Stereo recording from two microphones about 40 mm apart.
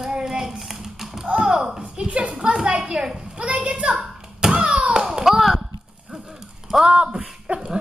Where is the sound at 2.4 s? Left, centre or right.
Right.